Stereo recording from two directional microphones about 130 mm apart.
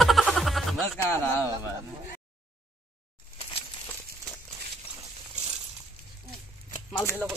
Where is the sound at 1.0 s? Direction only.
20° left (ahead or behind).